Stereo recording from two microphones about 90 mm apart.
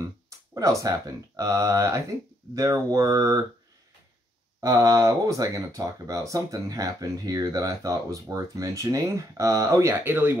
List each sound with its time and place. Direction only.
0.6 s speech: 40° right (ahead or behind)
4.6 s speech: 35° right (ahead or behind)